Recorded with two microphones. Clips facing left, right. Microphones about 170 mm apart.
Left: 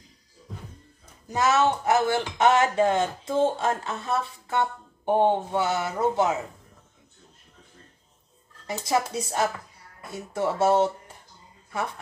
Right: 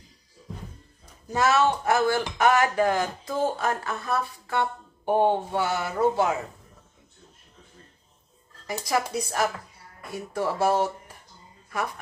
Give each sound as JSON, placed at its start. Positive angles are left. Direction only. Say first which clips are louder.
{"t": 1.3, "sound": "speech", "louder": "even", "side_deg": 20}
{"t": 8.8, "sound": "speech", "louder": "left 1 dB", "side_deg": 25}